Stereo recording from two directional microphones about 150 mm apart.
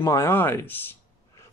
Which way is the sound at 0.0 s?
20° left (ahead or behind).